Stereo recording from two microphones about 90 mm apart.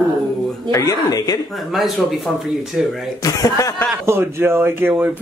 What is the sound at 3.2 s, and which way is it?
Speech, 40° left (ahead or behind).